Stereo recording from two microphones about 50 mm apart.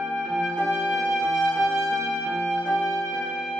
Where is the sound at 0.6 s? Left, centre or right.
Centre.